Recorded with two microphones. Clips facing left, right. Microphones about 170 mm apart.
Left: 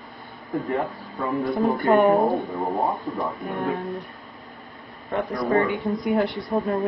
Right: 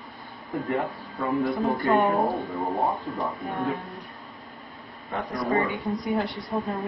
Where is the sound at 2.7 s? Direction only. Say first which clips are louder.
Left 1 dB; centre (ahead or behind).